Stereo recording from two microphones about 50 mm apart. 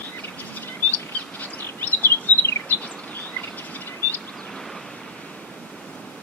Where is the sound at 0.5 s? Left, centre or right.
Left.